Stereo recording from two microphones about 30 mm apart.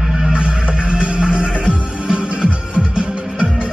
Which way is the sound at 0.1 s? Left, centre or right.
Right.